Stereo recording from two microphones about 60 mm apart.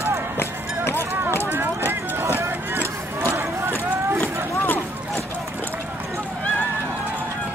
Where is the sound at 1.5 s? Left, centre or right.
Right.